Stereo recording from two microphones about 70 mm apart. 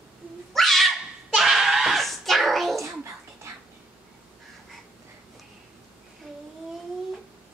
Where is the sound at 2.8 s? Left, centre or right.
Right.